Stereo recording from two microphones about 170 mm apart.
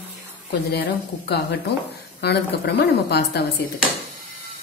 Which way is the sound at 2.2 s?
75° left (ahead or behind).